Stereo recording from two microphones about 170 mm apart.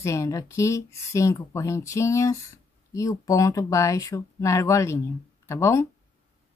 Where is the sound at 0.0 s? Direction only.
20° left (ahead or behind).